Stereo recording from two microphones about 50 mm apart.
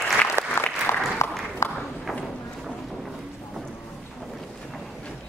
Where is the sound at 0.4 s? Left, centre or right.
Right.